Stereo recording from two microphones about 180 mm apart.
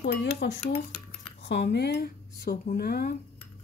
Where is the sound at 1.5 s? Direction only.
70° left (ahead or behind).